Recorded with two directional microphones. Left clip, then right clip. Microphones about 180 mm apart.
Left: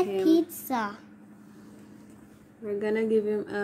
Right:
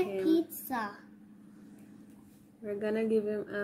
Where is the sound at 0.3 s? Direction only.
35° left (ahead or behind).